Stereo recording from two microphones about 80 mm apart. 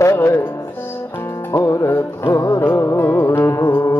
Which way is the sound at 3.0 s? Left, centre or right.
Left.